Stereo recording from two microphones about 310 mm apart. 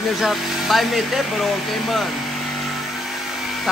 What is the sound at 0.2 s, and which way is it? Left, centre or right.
Speech, centre.